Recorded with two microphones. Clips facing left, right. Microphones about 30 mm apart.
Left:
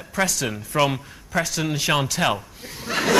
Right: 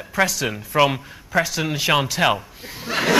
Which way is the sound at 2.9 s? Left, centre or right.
Centre.